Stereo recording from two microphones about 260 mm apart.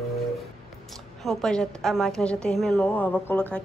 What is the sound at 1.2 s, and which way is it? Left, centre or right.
A woman's voice, centre.